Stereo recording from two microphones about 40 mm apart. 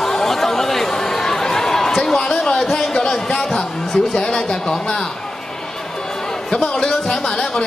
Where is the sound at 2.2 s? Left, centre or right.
Centre.